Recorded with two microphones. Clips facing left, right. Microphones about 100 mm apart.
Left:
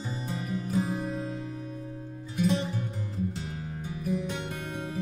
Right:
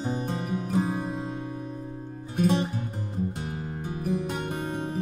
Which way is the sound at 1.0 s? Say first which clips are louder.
Right 1 dB; 25° right (ahead or behind).